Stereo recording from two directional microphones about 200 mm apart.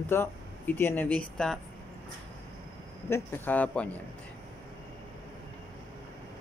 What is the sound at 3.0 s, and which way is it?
Speech, 10° left (ahead or behind).